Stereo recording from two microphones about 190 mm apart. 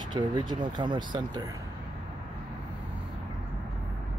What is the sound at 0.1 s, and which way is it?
Speech, 25° right (ahead or behind).